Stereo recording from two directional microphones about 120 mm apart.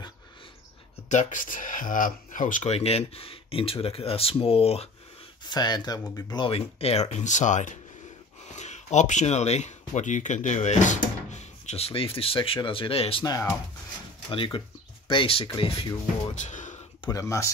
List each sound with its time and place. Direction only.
1.0 s speech: 85° left; by 4.8 s 55° left (ahead or behind)
5.5 s speech: 35° left (ahead or behind)
6.5 s speech: 55° left (ahead or behind); by 7.8 s 90° left
8.5 s speech: 75° left (ahead or behind); by 13.2 s 50° left (ahead or behind)
13.2 s speech: 30° left (ahead or behind)
14.3 s speech: 45° left (ahead or behind)
16.3 s a sound: 85° left
17.0 s speech: 30° left (ahead or behind)